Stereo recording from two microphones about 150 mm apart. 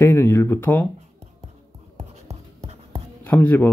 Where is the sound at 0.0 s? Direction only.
15° left (ahead or behind).